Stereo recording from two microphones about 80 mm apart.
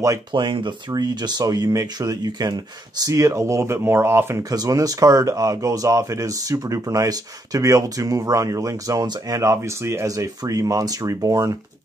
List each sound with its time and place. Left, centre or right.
0.3 s speech: right
0.9 s speech: right
4.4 s speech: right